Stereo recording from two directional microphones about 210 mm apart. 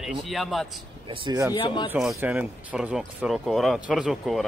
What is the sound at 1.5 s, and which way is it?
Speech, 20° left (ahead or behind).